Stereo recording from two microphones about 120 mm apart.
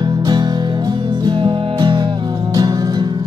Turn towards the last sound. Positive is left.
turn(degrees=-35)  # may be behind; listen again after turning